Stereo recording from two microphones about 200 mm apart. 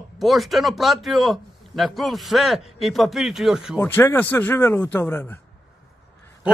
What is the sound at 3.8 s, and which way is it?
Speech, 10° left (ahead or behind).